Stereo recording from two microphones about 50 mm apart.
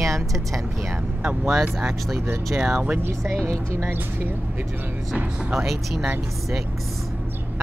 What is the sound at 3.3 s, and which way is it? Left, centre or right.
Speech, right.